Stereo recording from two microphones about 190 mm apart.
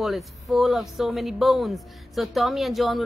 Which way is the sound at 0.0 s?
Centre (ahead or behind).